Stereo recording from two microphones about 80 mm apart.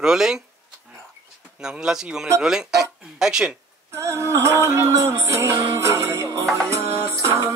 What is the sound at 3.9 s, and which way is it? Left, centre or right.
Music, right.